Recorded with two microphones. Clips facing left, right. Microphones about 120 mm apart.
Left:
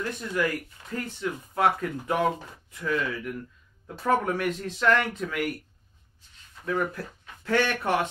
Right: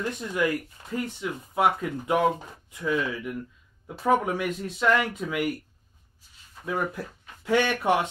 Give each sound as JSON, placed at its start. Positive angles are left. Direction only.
{"t": 0.0, "sound": "speech", "side_deg": -15}
{"t": 6.2, "sound": "a sound", "side_deg": -10}
{"t": 6.6, "sound": "speech", "side_deg": -15}